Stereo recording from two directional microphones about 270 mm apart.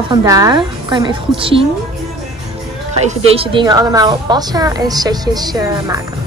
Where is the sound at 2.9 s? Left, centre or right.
Right.